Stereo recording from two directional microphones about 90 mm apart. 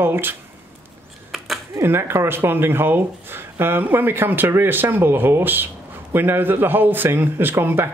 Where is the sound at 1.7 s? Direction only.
25° right (ahead or behind).